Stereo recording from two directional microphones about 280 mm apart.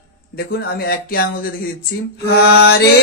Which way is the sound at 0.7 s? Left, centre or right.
Left.